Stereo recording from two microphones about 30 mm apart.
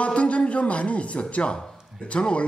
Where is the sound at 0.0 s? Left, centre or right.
Left.